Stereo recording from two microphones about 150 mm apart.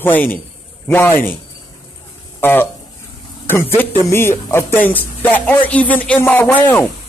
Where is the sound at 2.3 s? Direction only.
15° left (ahead or behind).